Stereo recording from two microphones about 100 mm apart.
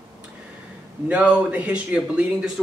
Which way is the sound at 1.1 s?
15° right (ahead or behind).